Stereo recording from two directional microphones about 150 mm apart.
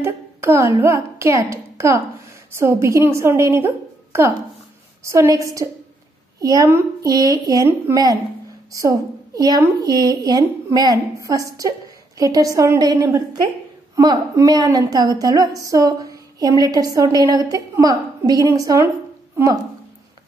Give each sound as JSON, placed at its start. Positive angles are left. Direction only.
{"t": 0.0, "sound": "a child's voice", "side_deg": -20}